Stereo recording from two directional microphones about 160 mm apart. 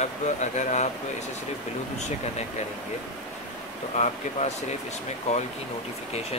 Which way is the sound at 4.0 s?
45° left (ahead or behind).